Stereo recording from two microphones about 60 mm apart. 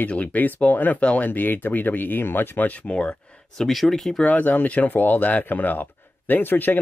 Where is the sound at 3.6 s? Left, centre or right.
Centre.